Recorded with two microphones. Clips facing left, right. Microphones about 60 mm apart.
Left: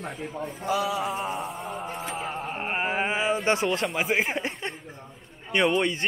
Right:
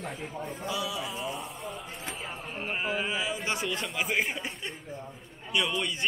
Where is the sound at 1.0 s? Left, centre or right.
Left.